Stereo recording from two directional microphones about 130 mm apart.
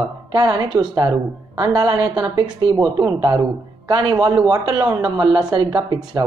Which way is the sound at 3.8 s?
30° right (ahead or behind).